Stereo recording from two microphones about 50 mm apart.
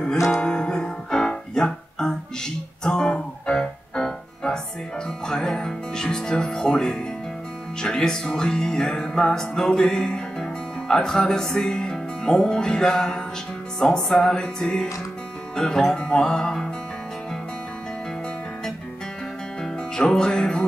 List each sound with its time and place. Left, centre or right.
0.3 s music: centre
19.6 s music: centre